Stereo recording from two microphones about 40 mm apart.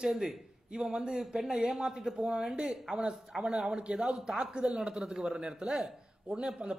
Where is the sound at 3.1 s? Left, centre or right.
Centre.